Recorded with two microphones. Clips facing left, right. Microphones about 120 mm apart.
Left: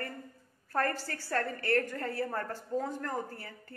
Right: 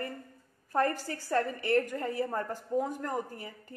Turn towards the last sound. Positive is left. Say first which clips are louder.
# right 2 dB
turn(degrees=-15)  # may be behind; listen again after turning